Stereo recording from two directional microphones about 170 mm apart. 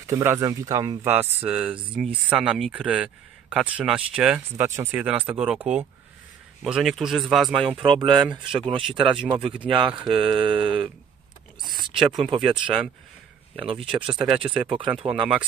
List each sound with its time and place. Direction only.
0.0 s speech: 15° right (ahead or behind)
7.5 s speech: 30° right (ahead or behind)